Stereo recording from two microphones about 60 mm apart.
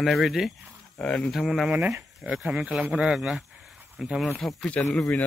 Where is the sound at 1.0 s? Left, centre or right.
Centre.